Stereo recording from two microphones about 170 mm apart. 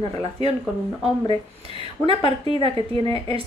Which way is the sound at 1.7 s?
35° right (ahead or behind).